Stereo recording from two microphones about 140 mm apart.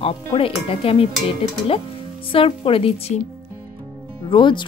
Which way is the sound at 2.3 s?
40° left (ahead or behind).